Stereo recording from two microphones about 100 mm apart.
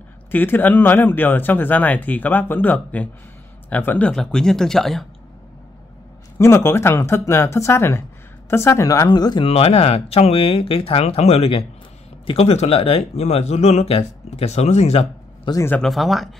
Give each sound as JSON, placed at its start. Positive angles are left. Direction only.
{"t": 0.3, "sound": "speech", "side_deg": 20}
{"t": 6.3, "sound": "speech", "side_deg": 25}
{"t": 9.1, "sound": "speech", "side_deg": 45}
{"t": 9.4, "sound": "speech", "side_deg": 90}
{"t": 12.3, "sound": "speech", "side_deg": 90}
{"t": 15.5, "sound": "speech", "side_deg": 50}
{"t": 15.8, "sound": "speech", "side_deg": 0}